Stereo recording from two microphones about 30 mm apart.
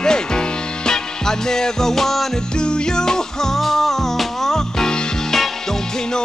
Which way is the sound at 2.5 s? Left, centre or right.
Left.